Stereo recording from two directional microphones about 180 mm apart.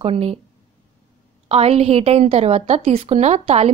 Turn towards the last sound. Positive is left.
turn(degrees=-35)  # may be behind; listen again after turning